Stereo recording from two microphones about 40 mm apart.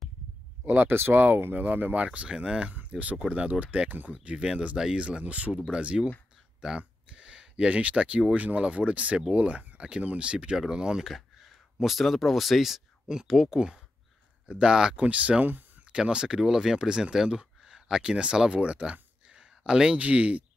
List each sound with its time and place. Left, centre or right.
0.7 s speech: right
1.1 s speech: right
2.1 s speech: right
2.6 s speech: right
6.8 s a sound: right
8.4 s speech: right
11.8 s speech: centre
13.1 s speech: centre
15.0 s speech: right
16.1 s speech: centre
20.0 s speech: right